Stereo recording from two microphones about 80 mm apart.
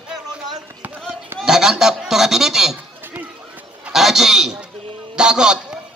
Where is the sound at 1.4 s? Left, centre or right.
Centre.